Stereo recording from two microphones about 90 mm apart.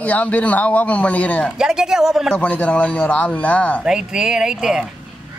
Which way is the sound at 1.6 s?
5° right (ahead or behind).